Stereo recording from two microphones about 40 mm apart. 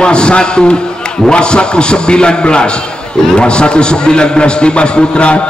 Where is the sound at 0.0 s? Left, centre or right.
Left.